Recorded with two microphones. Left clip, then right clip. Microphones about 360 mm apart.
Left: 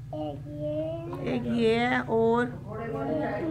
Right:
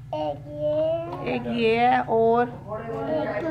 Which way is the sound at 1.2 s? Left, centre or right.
Centre.